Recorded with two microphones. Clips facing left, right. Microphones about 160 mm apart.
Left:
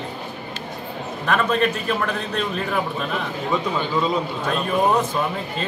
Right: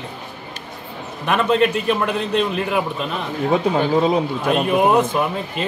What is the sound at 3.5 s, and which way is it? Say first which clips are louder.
Speech: right 6 dB; 60° right (ahead or behind).